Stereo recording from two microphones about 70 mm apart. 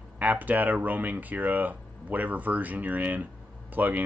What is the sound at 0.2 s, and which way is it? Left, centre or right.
Speech, right.